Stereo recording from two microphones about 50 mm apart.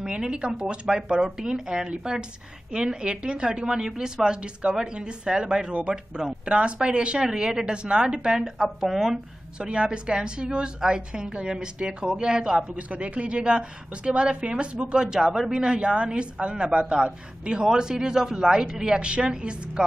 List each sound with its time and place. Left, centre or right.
0.0 s a woman's voice: centre
9.6 s a woman's voice: centre
12.7 s a woman's voice: right; by 15.6 s centre
15.6 s a woman's voice: right